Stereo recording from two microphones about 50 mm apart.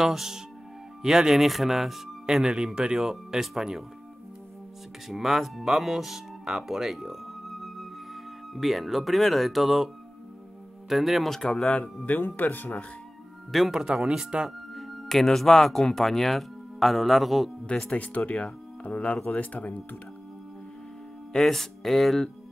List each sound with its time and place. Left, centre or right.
0.0 s speech: centre
5.0 s speech: centre
10.9 s speech: centre
12.1 s speech: left
13.7 s speech: centre
14.7 s speech: centre
17.6 s speech: left
21.4 s speech: centre